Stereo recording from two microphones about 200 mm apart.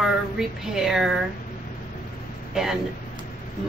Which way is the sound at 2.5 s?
Centre (ahead or behind).